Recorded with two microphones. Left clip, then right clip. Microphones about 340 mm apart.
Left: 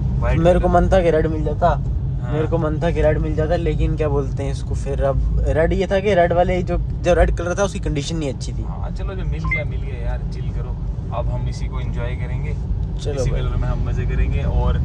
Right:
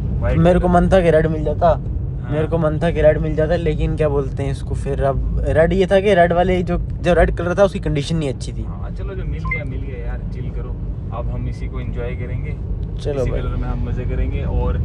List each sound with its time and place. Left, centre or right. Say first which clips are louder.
0.4 s speech: even; right